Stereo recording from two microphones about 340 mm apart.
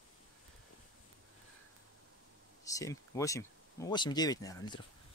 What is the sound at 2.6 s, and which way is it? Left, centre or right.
Speech, centre.